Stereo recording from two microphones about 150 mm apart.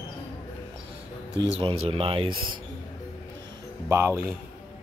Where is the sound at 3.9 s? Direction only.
20° right (ahead or behind).